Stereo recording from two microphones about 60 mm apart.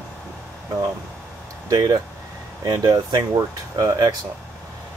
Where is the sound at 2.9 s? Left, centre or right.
Right.